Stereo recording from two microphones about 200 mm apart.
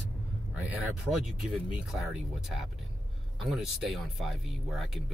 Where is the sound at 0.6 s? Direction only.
5° right (ahead or behind).